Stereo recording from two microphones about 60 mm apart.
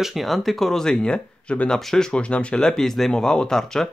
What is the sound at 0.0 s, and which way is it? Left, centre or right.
Speech, centre.